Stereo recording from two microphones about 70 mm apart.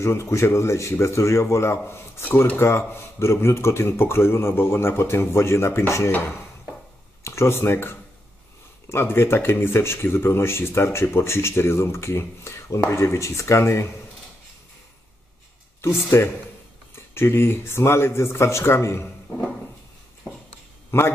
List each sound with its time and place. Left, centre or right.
0.0 s speech: left
7.2 s speech: left
15.8 s speech: left
20.9 s speech: left